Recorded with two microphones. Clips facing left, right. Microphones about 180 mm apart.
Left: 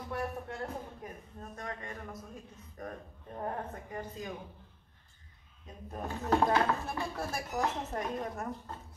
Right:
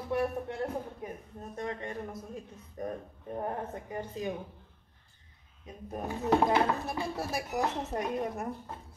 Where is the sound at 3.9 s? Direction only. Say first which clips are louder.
Right 5 dB; 25° right (ahead or behind).